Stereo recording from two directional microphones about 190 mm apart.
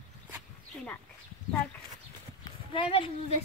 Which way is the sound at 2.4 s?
25° left (ahead or behind).